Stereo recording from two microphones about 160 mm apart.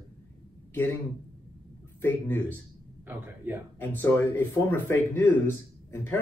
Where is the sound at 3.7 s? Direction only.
10° left (ahead or behind).